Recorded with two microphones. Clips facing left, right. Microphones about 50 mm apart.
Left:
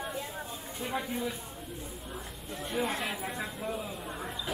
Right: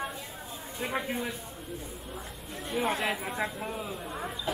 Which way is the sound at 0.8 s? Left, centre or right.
Right.